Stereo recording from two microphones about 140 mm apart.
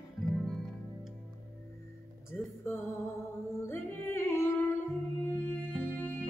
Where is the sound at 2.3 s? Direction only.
15° left (ahead or behind).